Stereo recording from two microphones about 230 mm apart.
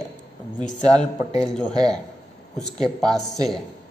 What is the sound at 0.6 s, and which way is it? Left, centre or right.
Speech, left.